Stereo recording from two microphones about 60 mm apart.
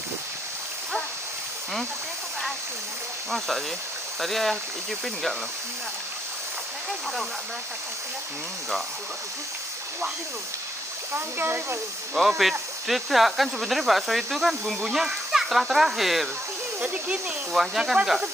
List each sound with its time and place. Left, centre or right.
3.3 s speech: centre
11.1 s speech: right
12.4 s speech: centre
16.8 s speech: right
17.5 s speech: centre